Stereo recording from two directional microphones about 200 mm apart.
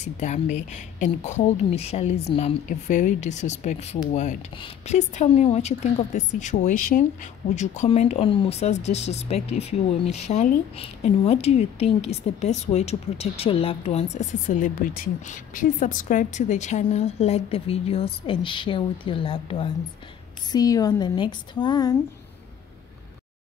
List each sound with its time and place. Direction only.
0.0 s speech: 35° left (ahead or behind)